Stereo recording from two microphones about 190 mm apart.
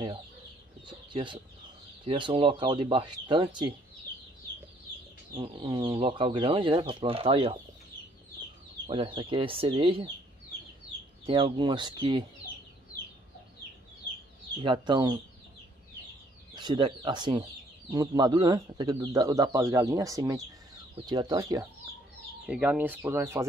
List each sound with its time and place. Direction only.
0.8 s speech: 25° right (ahead or behind)
5.3 s speech: 25° right (ahead or behind)
8.8 s speech: 30° right (ahead or behind)
11.2 s speech: 25° right (ahead or behind)
14.6 s speech: 25° right (ahead or behind)
16.5 s speech: 25° right (ahead or behind)
22.5 s speech: 5° right (ahead or behind)